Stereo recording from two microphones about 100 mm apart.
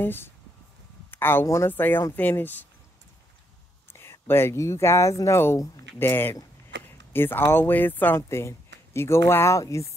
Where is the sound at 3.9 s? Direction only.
25° left (ahead or behind).